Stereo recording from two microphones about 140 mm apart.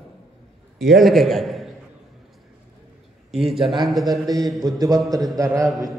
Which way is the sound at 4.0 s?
25° right (ahead or behind).